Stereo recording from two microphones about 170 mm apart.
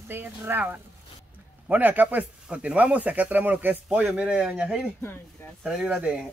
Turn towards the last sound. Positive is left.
turn(degrees=-5)  # may be behind; listen again after turning